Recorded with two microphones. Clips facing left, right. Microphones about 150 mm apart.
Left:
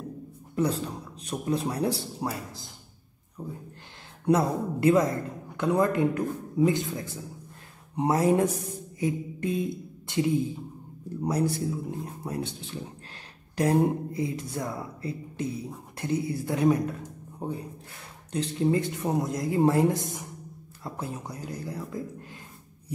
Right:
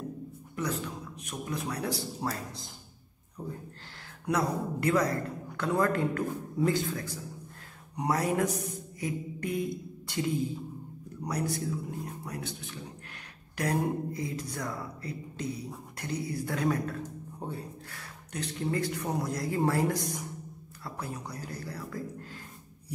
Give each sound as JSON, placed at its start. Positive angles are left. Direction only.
{"t": 0.6, "sound": "speech", "side_deg": 30}
{"t": 2.1, "sound": "a man's voice", "side_deg": 10}
{"t": 4.3, "sound": "a man's voice", "side_deg": 25}